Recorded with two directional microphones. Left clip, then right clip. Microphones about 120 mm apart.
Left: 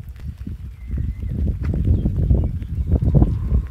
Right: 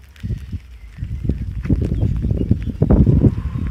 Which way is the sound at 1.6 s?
20° left (ahead or behind).